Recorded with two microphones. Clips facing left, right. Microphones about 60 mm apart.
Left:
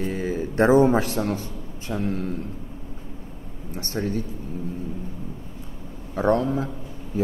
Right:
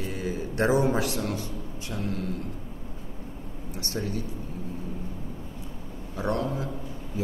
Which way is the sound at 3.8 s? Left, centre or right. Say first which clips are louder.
Left 5 dB; left.